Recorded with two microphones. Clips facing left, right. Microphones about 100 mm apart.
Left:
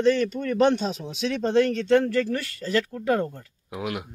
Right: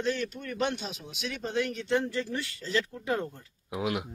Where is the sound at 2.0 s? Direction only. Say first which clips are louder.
Left 8 dB; 70° left (ahead or behind).